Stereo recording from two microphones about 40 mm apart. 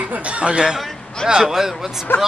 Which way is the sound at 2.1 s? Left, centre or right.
Left.